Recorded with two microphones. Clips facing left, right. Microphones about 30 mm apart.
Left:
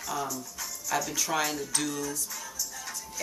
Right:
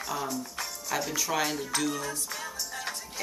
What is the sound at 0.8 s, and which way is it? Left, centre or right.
Music, right.